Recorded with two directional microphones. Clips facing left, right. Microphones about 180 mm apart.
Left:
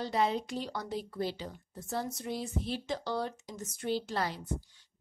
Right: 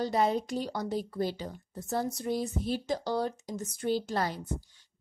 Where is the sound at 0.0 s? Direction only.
45° right (ahead or behind).